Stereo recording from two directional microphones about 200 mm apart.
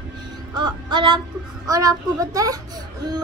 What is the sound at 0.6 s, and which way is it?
Speech, 20° right (ahead or behind).